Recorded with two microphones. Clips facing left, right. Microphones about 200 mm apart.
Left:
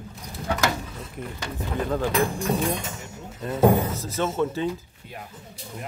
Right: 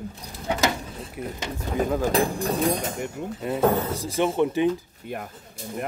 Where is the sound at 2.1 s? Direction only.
35° right (ahead or behind).